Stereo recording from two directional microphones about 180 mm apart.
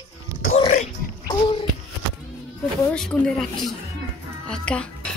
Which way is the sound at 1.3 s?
30° left (ahead or behind).